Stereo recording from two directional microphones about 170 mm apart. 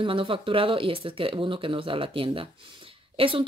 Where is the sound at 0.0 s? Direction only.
30° right (ahead or behind).